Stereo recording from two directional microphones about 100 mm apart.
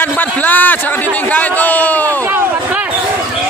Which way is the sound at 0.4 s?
15° left (ahead or behind).